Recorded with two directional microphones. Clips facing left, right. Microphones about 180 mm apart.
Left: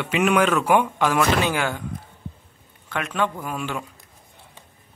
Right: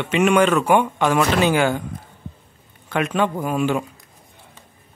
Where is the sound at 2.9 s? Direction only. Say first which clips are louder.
Right 5 dB; 15° right (ahead or behind).